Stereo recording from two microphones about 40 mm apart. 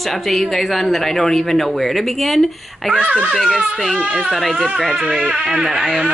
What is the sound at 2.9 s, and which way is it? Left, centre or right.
Speech, right.